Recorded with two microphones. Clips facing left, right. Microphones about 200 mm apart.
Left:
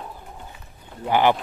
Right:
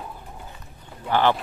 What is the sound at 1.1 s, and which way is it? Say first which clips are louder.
Speech: left 2 dB; 15° left (ahead or behind).